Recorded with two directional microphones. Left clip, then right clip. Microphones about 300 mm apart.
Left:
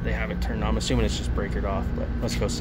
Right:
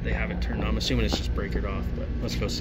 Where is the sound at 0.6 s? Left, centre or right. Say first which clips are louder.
Left 2 dB; centre.